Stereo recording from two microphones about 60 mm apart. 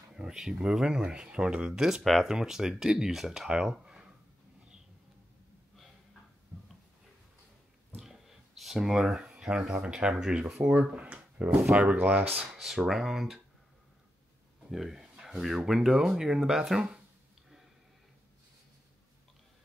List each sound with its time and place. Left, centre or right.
0.1 s speech: centre
7.9 s a sound: centre
9.7 s speech: centre
11.1 s a sound: right
11.7 s speech: centre
12.0 s speech: right
12.5 s speech: centre
14.7 s speech: centre